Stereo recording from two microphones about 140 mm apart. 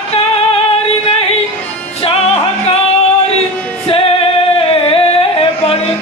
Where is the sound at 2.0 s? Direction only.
45° left (ahead or behind).